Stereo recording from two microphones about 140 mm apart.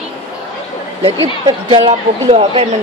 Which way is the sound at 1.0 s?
35° right (ahead or behind).